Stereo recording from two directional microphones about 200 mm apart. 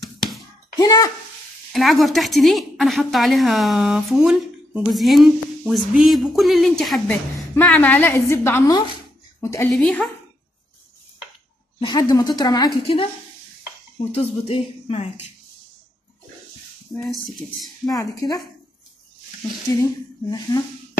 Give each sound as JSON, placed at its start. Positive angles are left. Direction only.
{"t": 0.0, "sound": "hands", "side_deg": 0}
{"t": 0.7, "sound": "a woman's voice", "side_deg": 20}
{"t": 1.7, "sound": "a woman's voice", "side_deg": 0}
{"t": 9.7, "sound": "a woman's voice", "side_deg": 0}
{"t": 11.8, "sound": "a woman's voice", "side_deg": 20}
{"t": 17.8, "sound": "a woman's voice", "side_deg": 20}
{"t": 19.8, "sound": "a woman's voice", "side_deg": 20}